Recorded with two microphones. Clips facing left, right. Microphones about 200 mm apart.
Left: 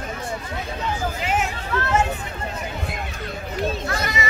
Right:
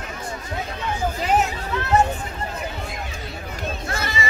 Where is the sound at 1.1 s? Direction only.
35° right (ahead or behind).